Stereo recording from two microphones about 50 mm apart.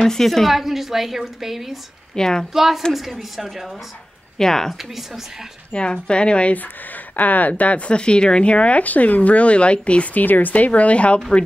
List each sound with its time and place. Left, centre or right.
0.0 s a woman's voice: centre
2.1 s speech: centre
2.5 s a woman's voice: centre
4.4 s speech: centre
4.7 s a woman's voice: centre
5.7 s speech: left
6.5 s speech: left